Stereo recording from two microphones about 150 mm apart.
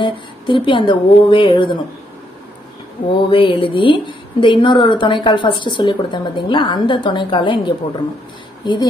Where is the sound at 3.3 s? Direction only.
35° left (ahead or behind).